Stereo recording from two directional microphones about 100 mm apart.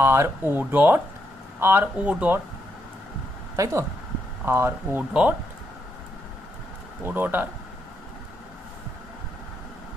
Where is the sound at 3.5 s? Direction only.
30° right (ahead or behind).